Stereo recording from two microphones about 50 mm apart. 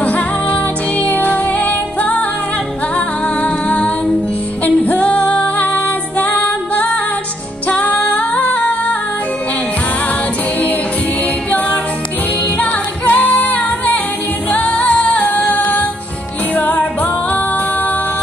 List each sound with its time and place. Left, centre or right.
0.0 s music: left
3.4 s music: left
12.5 s music: left